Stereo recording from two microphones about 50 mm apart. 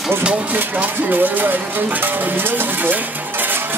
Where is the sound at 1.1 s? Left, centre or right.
Right.